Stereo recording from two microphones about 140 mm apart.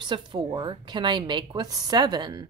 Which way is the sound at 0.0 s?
35° right (ahead or behind).